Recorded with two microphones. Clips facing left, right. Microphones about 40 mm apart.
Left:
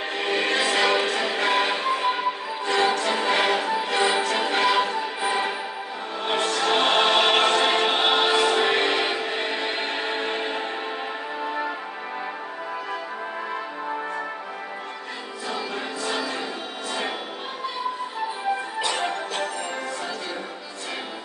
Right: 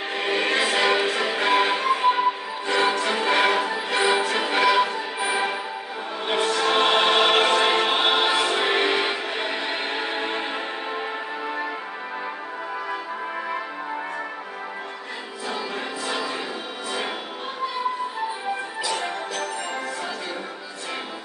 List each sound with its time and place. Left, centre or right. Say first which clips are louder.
0.1 s music: right 1 dB; centre
18.8 s music: left 1 dB; left